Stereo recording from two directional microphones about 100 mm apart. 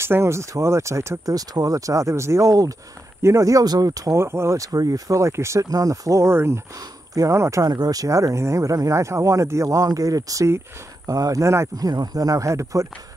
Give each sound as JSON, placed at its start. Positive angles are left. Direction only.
{"t": 0.0, "sound": "speech", "side_deg": -25}